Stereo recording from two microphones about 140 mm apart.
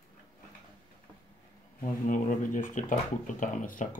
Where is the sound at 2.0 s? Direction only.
70° left (ahead or behind).